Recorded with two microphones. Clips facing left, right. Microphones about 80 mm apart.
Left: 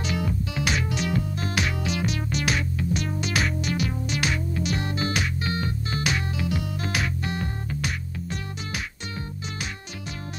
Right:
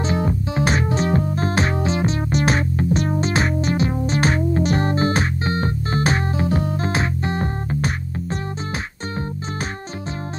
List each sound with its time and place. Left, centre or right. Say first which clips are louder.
0.0 s music: right 6 dB; right